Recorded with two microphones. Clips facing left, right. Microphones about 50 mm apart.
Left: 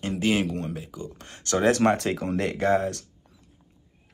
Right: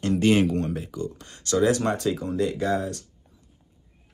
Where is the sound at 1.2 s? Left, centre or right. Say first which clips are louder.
Right 2 dB; left.